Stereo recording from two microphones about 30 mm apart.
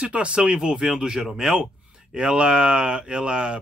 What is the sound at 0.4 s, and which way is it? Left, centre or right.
Speech, right.